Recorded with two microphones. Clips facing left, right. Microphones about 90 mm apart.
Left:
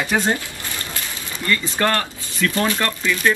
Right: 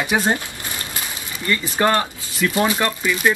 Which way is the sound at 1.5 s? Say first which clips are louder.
Right 2 dB; 15° right (ahead or behind).